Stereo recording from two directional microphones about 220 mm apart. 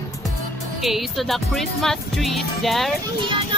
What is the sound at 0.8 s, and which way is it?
Music, centre (ahead or behind).